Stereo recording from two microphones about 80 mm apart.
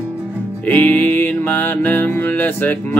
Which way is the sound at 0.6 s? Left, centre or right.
Left.